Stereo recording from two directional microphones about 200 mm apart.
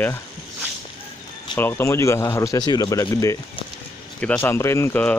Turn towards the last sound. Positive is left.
turn(degrees=10)  # may be behind; listen again after turning